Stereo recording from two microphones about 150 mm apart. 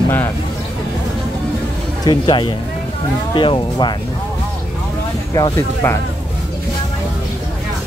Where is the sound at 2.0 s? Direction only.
30° left (ahead or behind).